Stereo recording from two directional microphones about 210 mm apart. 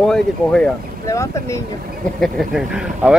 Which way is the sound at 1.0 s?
15° left (ahead or behind).